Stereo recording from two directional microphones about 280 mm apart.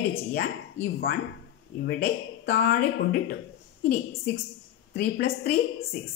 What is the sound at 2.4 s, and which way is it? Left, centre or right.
Speech, left.